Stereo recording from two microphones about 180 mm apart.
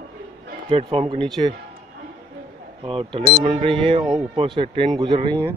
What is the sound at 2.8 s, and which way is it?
Speech, 30° right (ahead or behind).